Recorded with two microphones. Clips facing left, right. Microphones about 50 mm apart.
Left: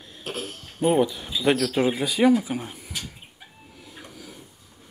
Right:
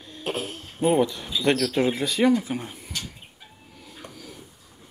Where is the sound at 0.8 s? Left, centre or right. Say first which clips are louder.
Even; centre.